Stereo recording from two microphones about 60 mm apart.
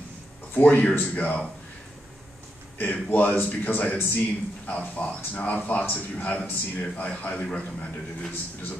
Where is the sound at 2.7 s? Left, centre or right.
Left.